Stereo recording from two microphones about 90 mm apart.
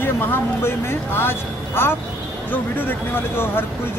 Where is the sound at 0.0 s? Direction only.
25° left (ahead or behind).